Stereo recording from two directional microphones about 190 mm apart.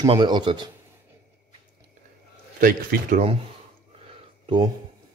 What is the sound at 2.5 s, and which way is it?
Speech, 45° right (ahead or behind).